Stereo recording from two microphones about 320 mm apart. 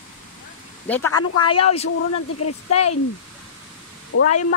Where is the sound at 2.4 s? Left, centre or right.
Left.